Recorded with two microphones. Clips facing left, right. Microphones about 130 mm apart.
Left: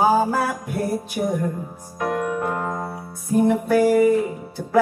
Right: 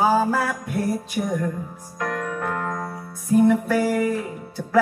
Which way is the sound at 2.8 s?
25° left (ahead or behind).